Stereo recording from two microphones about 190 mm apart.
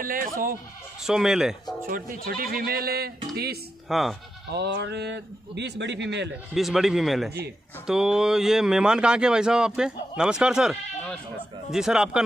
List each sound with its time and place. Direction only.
0.0 s speech: 45° right (ahead or behind)
1.0 s speech: 5° right (ahead or behind)
1.9 s speech: 50° right (ahead or behind)
3.9 s speech: centre (ahead or behind)
4.6 s speech: 60° right (ahead or behind)
6.5 s speech: centre (ahead or behind)